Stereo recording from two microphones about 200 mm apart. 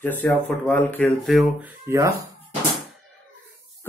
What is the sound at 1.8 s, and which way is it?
Speech, 15° right (ahead or behind).